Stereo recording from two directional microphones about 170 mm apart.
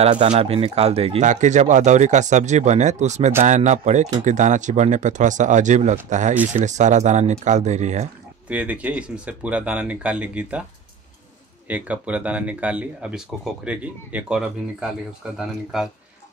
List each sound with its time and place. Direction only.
0.3 s speech: 35° right (ahead or behind)
8.5 s speech: 10° right (ahead or behind)
11.6 s a man's voice: 10° right (ahead or behind)